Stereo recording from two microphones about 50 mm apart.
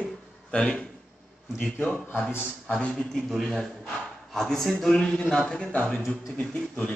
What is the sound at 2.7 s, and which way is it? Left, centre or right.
Speech, centre.